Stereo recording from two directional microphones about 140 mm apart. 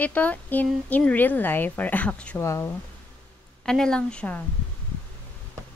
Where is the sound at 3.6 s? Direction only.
5° left (ahead or behind).